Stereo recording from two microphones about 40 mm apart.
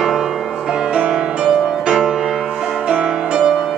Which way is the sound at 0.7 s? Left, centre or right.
Centre.